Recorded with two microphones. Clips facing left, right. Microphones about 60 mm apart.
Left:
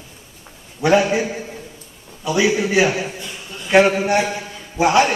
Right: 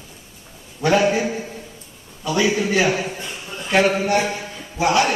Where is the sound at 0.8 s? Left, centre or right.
Centre.